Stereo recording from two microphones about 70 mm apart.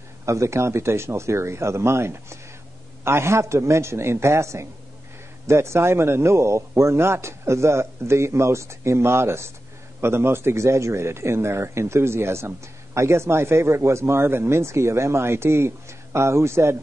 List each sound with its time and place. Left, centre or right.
0.2 s speech: right